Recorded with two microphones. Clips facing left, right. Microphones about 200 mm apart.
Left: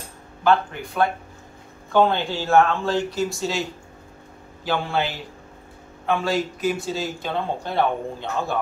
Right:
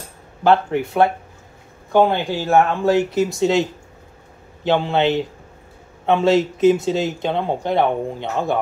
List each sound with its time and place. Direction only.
0.7 s speech: 25° right (ahead or behind)
1.9 s speech: 15° right (ahead or behind)
4.6 s speech: 20° right (ahead or behind)